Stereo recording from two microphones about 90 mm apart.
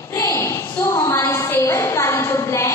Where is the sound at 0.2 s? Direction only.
30° left (ahead or behind).